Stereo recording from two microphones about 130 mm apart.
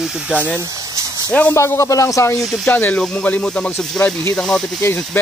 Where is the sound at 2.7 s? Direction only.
15° left (ahead or behind).